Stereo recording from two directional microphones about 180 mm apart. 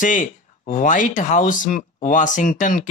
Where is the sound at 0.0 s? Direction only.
45° left (ahead or behind).